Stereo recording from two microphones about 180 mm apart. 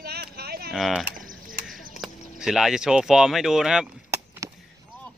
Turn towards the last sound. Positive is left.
turn(degrees=-15)  # may be behind; listen again after turning